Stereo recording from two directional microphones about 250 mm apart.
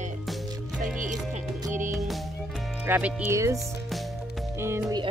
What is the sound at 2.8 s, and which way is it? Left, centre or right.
Speech, centre.